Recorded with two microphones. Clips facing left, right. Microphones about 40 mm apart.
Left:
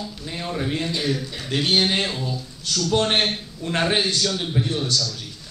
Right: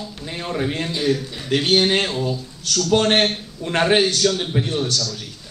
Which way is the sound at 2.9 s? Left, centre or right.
Right.